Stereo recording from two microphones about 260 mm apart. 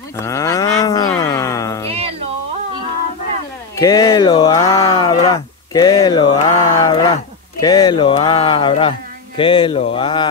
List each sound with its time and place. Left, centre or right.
0.2 s cattle: centre
1.9 s music: right
3.7 s a sound: centre
7.6 s speech: centre